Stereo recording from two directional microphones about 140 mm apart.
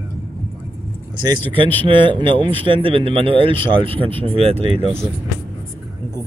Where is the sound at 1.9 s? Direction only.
35° right (ahead or behind).